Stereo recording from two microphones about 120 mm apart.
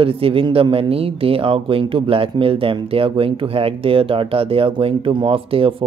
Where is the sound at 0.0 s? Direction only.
50° right (ahead or behind).